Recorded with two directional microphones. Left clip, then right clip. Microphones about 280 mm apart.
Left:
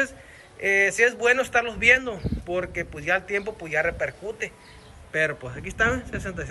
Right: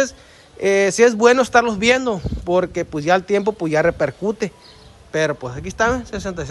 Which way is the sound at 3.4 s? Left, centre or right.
Right.